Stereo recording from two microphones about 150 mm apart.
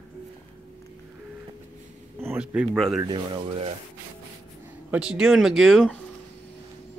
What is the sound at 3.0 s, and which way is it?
Speech, 30° right (ahead or behind).